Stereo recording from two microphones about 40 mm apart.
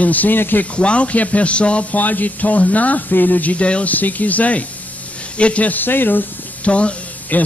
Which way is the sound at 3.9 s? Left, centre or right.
Left.